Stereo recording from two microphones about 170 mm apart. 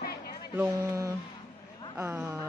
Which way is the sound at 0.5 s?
20° right (ahead or behind).